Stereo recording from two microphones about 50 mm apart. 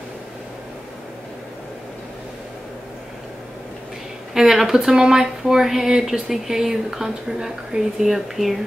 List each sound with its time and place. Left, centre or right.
4.3 s speech: centre